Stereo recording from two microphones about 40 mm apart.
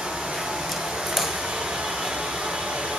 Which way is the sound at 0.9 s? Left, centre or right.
Centre.